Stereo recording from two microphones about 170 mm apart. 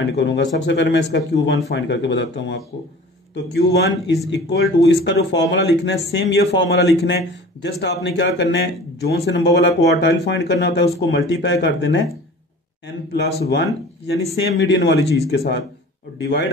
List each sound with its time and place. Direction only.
0.1 s a man's voice: 90° left